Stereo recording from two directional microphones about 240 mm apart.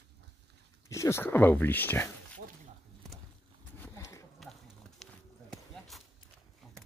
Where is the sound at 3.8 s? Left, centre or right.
Centre.